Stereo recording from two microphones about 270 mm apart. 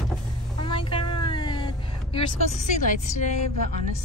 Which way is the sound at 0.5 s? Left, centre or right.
Centre.